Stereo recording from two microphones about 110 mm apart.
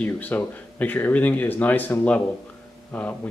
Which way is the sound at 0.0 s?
15° left (ahead or behind).